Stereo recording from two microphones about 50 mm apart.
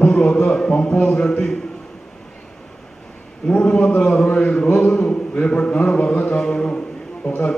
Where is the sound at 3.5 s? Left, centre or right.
Left.